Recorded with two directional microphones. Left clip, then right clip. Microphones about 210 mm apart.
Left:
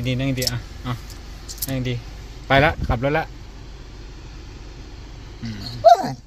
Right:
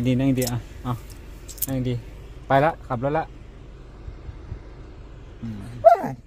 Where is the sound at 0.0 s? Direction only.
30° right (ahead or behind).